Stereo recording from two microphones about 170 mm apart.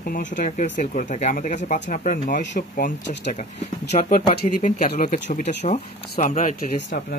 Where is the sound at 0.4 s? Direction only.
50° left (ahead or behind).